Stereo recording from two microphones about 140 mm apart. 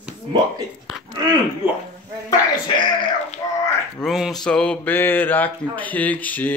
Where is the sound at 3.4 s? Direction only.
25° left (ahead or behind).